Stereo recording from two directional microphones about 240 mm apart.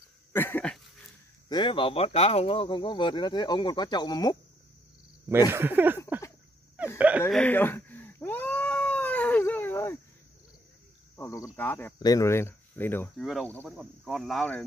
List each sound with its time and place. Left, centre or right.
0.3 s dog: centre
1.5 s speech: centre
5.5 s speech: centre
7.0 s cat: centre
11.1 s speech: centre